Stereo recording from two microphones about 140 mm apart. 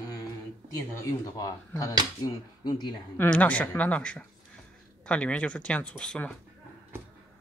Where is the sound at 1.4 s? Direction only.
25° left (ahead or behind).